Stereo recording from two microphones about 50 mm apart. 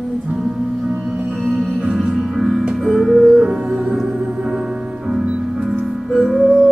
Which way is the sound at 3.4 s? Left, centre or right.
Centre.